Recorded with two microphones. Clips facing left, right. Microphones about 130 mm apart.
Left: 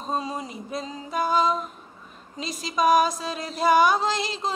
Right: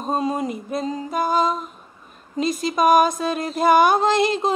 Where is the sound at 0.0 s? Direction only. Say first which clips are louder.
Right 6 dB; 50° right (ahead or behind).